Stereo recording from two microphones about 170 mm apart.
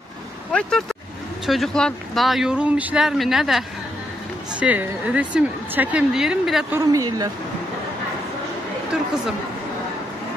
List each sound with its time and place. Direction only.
0.5 s a woman's voice: 5° left (ahead or behind)
6.9 s speech: 20° right (ahead or behind)